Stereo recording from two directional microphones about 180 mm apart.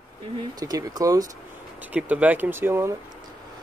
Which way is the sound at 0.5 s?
20° right (ahead or behind).